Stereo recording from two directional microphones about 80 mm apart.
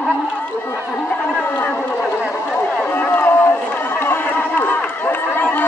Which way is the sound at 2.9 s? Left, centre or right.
Left.